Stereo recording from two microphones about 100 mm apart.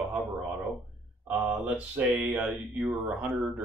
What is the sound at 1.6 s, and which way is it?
Speech, 15° right (ahead or behind).